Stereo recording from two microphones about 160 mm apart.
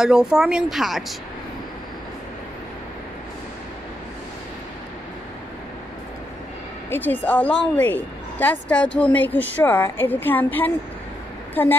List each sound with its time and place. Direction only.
0.0 s speech: 5° right (ahead or behind)
6.9 s a woman's voice: 10° left (ahead or behind)